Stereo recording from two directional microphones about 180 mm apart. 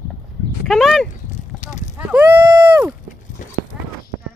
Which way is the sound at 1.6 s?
40° left (ahead or behind).